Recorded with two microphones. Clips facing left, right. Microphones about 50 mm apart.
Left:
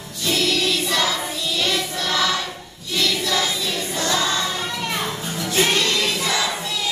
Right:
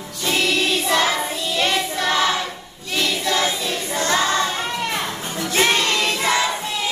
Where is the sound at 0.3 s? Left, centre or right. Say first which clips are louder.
Right 1 dB; right.